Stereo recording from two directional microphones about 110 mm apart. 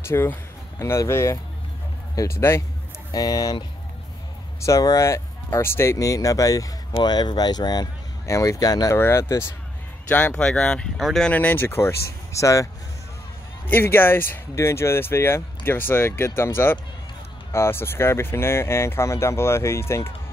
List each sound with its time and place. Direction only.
0.0 s speech: 25° left (ahead or behind)
3.1 s speech: 35° left (ahead or behind)
4.6 s speech: 30° left (ahead or behind)
8.9 s speech: 25° left (ahead or behind)
10.0 s speech: 10° left (ahead or behind)
11.2 s speech: 15° left (ahead or behind)
13.7 s speech: 20° left (ahead or behind)